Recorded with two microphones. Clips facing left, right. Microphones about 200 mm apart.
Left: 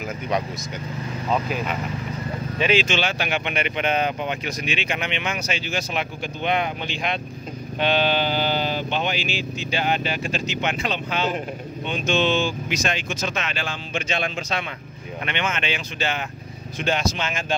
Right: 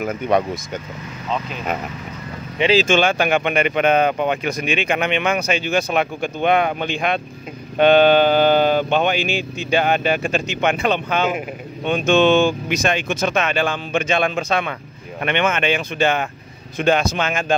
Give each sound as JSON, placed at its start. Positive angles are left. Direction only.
{"t": 0.0, "sound": "speech", "side_deg": -55}
{"t": 2.6, "sound": "speech", "side_deg": -35}
{"t": 2.9, "sound": "speech", "side_deg": -50}